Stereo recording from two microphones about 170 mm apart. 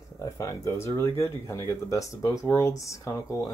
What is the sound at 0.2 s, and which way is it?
Speech, 20° left (ahead or behind).